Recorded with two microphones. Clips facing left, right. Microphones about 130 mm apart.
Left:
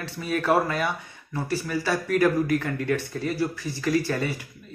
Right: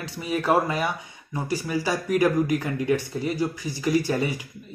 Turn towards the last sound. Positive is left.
turn(degrees=-15)  # may be behind; listen again after turning